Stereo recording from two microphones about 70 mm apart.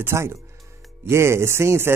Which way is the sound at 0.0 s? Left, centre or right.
Right.